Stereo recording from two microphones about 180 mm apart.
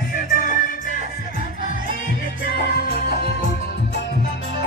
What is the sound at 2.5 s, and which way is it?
Music, 60° left (ahead or behind).